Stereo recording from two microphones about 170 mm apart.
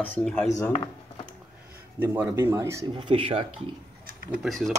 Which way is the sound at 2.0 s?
15° right (ahead or behind).